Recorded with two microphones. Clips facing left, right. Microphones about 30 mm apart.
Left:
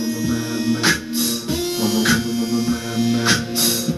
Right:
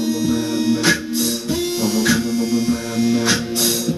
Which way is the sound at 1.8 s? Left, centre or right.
Centre.